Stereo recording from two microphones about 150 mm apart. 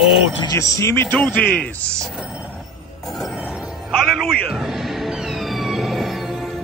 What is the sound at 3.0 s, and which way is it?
Music, centre (ahead or behind).